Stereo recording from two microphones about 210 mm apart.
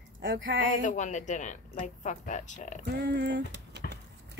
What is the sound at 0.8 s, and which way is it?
Speech, 35° left (ahead or behind).